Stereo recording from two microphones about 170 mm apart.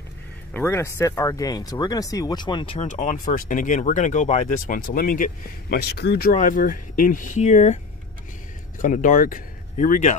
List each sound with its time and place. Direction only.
0.5 s speech: 15° left (ahead or behind); by 2.9 s 30° left (ahead or behind)
2.9 s speech: 45° left (ahead or behind); by 6.3 s 65° left (ahead or behind)
6.3 s speech: 50° left (ahead or behind)